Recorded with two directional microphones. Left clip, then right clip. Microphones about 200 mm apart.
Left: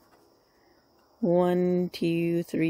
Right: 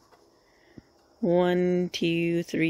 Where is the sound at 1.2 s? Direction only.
10° left (ahead or behind).